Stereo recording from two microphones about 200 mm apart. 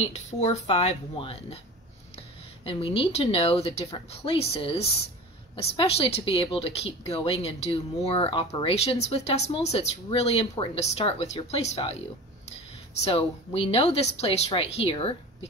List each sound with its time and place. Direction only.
0.0 s speech: 35° left (ahead or behind)
13.0 s speech: 30° left (ahead or behind)